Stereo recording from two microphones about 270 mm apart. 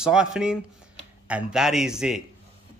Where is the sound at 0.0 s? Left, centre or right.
Centre.